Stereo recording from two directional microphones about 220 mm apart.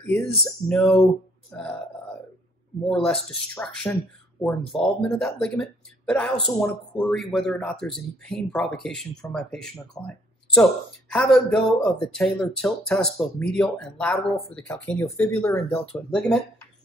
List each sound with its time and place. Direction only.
0.0 s speech: centre (ahead or behind)
2.9 s speech: centre (ahead or behind)